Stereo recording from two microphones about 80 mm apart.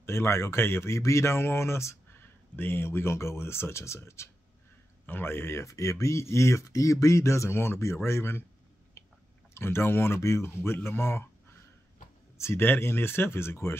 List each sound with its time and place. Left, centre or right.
0.0 s speech: left
9.0 s chewing: left
9.5 s speech: left
12.4 s speech: left